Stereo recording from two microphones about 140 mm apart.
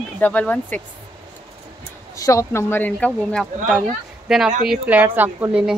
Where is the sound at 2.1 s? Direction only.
25° left (ahead or behind).